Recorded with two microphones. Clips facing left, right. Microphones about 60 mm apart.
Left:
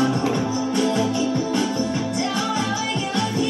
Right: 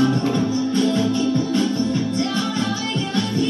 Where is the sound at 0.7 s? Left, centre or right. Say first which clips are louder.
Right 1 dB; centre.